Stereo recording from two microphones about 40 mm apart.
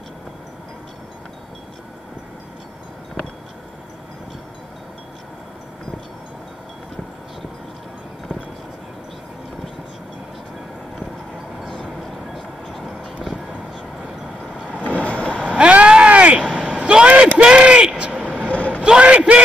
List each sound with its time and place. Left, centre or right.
12.4 s vehicle: centre
14.8 s vehicle: left
15.5 s vehicle: right
16.4 s vehicle: centre
16.8 s vehicle: right
17.4 s a sound: right
17.9 s vehicle: right
18.5 s a sound: left
18.9 s a sound: right